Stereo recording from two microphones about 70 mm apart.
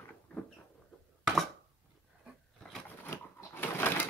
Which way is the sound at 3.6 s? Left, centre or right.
Left.